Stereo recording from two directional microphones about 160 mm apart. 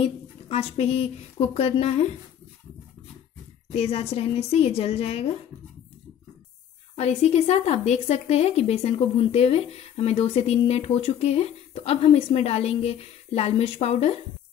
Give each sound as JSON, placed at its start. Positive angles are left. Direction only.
{"t": 0.0, "sound": "a woman's voice", "side_deg": 35}
{"t": 3.7, "sound": "speech", "side_deg": 40}
{"t": 7.0, "sound": "speech", "side_deg": 45}